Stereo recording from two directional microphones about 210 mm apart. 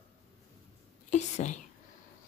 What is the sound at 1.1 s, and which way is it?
Whispering, 35° left (ahead or behind).